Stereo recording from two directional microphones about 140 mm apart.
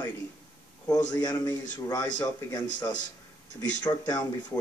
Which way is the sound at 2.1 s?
30° left (ahead or behind).